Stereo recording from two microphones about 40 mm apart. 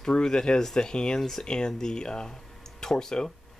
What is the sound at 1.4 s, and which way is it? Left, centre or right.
Speech, left.